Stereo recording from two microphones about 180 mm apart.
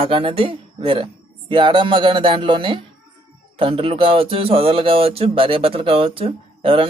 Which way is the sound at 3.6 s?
30° right (ahead or behind).